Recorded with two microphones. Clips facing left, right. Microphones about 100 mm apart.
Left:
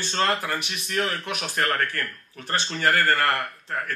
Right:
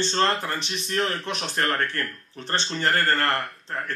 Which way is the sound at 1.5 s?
20° right (ahead or behind).